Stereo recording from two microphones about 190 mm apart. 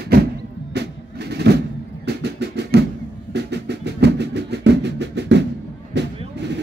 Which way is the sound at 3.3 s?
65° right (ahead or behind).